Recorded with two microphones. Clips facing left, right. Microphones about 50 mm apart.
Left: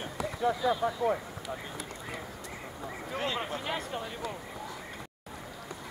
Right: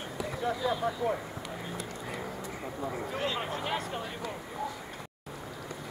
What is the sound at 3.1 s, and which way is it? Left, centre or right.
Speech, centre.